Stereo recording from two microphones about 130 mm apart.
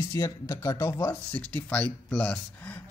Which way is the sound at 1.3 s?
10° left (ahead or behind).